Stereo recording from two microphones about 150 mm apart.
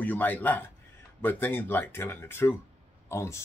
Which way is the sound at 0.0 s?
10° left (ahead or behind).